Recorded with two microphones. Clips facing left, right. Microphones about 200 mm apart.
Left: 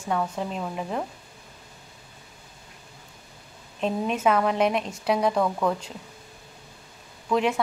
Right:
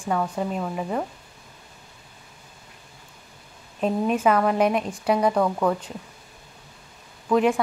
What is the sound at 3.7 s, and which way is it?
A woman's voice, 5° right (ahead or behind).